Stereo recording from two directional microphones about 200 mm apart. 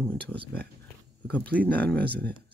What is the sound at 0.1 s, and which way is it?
Speech, 5° left (ahead or behind).